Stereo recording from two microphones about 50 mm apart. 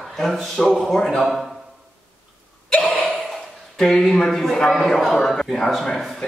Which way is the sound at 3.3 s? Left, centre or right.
Centre.